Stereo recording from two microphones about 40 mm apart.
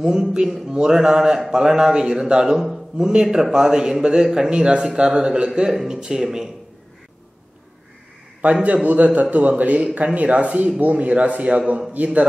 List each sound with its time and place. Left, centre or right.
0.0 s a man's voice: centre
3.1 s a man's voice: right
5.7 s a man's voice: centre
8.6 s a man's voice: right